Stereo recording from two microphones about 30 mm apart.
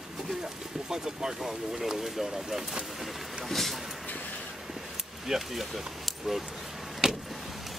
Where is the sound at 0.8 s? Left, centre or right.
Centre.